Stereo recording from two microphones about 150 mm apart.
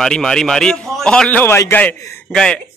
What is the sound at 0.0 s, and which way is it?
A man's voice, 5° left (ahead or behind).